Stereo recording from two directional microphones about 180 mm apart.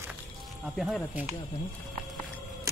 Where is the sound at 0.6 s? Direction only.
Centre (ahead or behind).